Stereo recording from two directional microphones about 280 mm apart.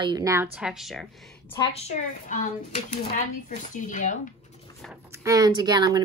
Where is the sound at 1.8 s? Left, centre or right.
Left.